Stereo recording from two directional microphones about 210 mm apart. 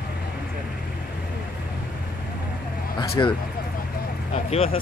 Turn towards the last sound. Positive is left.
turn(degrees=30)  # may be behind; listen again after turning